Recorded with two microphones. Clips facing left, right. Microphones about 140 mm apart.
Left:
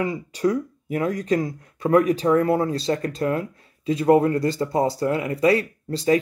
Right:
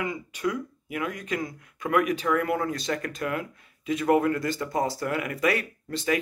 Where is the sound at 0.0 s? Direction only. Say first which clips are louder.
Left 6 dB; 35° left (ahead or behind).